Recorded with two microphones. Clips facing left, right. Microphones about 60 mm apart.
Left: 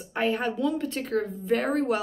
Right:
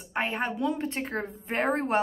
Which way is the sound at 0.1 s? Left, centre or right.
Right.